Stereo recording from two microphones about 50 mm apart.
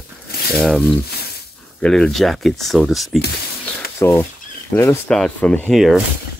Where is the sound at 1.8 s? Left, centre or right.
Centre.